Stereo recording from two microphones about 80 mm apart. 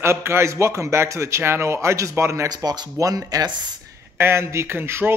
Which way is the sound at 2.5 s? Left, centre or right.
Right.